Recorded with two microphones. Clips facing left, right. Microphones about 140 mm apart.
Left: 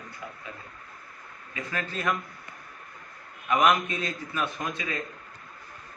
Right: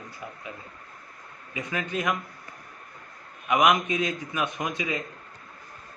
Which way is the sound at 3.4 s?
15° right (ahead or behind).